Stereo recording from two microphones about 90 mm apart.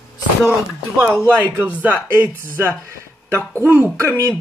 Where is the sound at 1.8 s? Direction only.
25° right (ahead or behind).